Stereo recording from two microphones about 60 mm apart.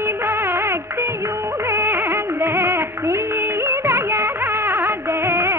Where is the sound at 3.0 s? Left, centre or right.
Right.